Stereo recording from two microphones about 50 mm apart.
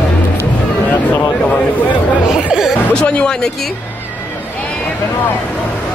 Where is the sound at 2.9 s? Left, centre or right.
Centre.